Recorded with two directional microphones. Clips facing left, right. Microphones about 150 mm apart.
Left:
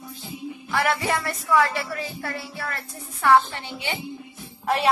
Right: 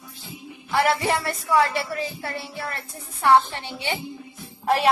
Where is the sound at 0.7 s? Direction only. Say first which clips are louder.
Right 3 dB; 30° right (ahead or behind).